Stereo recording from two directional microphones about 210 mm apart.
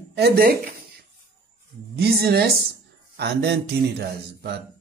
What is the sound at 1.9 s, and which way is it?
Speech, 50° right (ahead or behind).